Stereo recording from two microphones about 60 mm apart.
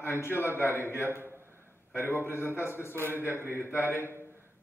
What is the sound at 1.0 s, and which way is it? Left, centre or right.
Speech, right.